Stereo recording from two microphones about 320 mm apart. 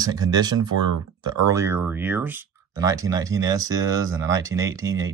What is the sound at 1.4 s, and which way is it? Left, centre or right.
Speech, centre.